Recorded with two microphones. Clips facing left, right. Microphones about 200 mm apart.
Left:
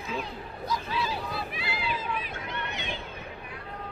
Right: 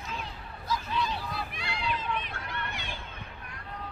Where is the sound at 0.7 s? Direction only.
5° left (ahead or behind).